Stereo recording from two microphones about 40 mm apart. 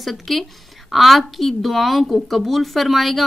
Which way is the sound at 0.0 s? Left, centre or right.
Centre.